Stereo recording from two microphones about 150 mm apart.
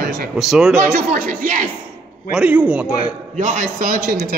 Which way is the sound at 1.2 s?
70° right (ahead or behind).